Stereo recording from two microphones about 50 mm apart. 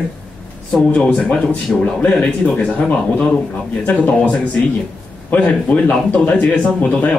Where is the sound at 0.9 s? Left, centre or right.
Centre.